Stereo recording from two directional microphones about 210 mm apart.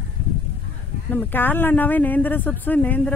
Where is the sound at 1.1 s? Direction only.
10° left (ahead or behind).